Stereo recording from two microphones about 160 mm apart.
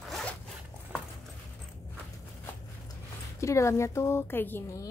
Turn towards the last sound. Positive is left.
turn(degrees=15)  # may be behind; listen again after turning